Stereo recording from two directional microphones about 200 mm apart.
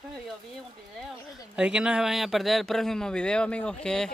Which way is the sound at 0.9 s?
Centre (ahead or behind).